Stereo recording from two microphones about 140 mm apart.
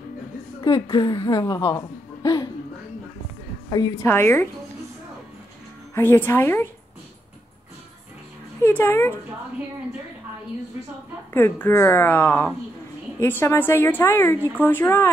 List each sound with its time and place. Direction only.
0.6 s a sound: 25° left (ahead or behind)
0.8 s speech: 30° left (ahead or behind)
4.0 s a woman's voice: 15° left (ahead or behind)
5.9 s a woman's voice: 15° left (ahead or behind)
8.6 s a woman's voice: 15° left (ahead or behind)
11.3 s a woman's voice: 15° left (ahead or behind)